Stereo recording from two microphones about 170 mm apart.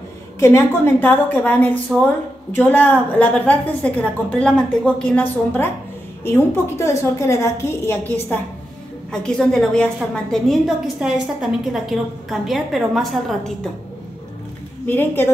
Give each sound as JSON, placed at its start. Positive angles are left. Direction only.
{"t": 0.4, "sound": "a woman's voice", "side_deg": 15}
{"t": 14.9, "sound": "a woman's voice", "side_deg": 10}